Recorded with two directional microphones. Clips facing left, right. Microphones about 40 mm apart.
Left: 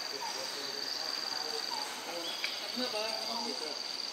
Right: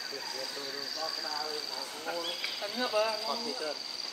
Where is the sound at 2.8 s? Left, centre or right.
Right.